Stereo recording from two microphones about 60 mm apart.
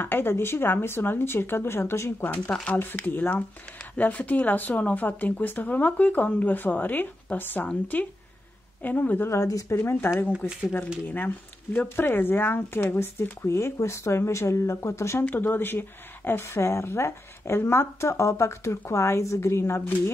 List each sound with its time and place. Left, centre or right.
0.0 s speech: left
9.3 s speech: left
9.8 s speech: left
15.2 s speech: left